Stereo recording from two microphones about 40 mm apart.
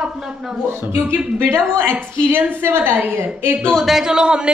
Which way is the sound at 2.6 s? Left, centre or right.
Right.